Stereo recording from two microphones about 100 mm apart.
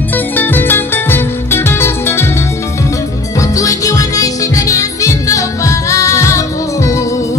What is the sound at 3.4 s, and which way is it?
Music, 35° left (ahead or behind).